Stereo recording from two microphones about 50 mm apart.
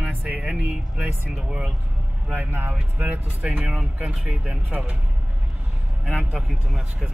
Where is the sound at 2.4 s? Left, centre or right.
Right.